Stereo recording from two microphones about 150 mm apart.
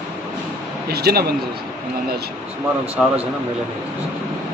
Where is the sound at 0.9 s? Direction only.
90° right.